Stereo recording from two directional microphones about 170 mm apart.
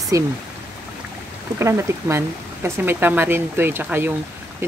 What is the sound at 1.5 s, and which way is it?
Speech, 15° right (ahead or behind).